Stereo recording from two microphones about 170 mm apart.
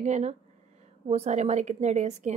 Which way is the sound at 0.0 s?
40° right (ahead or behind).